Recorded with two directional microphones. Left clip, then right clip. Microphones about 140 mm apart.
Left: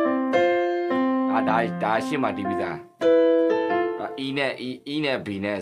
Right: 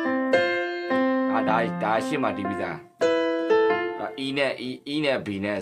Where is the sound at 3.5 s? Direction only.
40° right (ahead or behind).